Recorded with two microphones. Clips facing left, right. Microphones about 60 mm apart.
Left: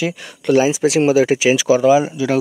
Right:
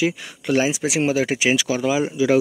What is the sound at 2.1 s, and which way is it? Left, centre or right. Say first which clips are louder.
Speech: right 1 dB; centre.